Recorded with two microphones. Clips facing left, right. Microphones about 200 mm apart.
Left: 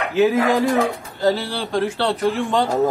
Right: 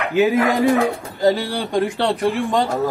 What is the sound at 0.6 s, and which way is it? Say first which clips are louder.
Speech: right 2 dB; centre (ahead or behind).